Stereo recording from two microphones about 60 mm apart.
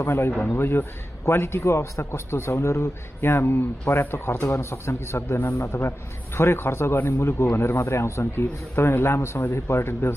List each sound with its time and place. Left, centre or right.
0.0 s a man's voice: left
7.8 s a man's voice: left